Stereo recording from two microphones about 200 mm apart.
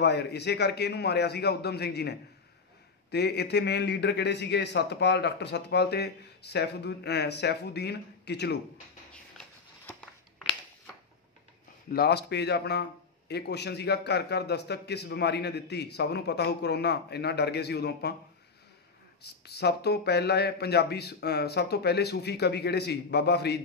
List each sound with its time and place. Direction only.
0.0 s a man's voice: 55° left (ahead or behind)
9.1 s a sound: 5° left (ahead or behind)
11.9 s a man's voice: 55° left (ahead or behind)
19.2 s a man's voice: 55° left (ahead or behind)